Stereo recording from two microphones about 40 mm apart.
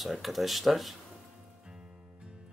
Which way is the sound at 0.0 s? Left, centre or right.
Centre.